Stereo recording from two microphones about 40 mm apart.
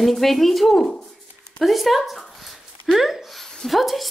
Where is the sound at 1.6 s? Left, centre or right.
Centre.